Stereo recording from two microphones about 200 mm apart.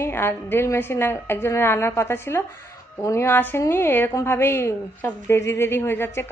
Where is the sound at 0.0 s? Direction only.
10° left (ahead or behind).